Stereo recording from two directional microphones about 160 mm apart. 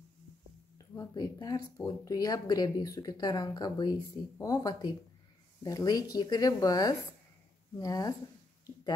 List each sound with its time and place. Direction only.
0.9 s speech: 20° left (ahead or behind)